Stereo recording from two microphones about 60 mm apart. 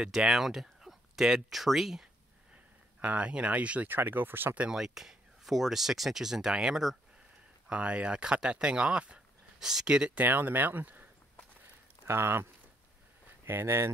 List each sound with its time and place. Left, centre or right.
0.0 s speech: centre
3.0 s speech: right
3.9 s speech: right
4.7 s speech: centre
7.6 s speech: centre
10.2 s speech: right
12.1 s speech: right
13.5 s speech: right